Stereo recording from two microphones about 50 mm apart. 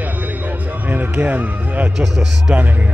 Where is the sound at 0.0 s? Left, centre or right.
Right.